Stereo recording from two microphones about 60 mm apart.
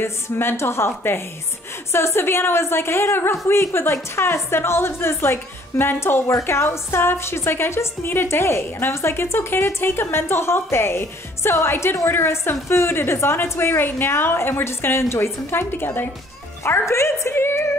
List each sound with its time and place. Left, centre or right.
0.0 s a woman's voice: left
6.2 s a woman's voice: left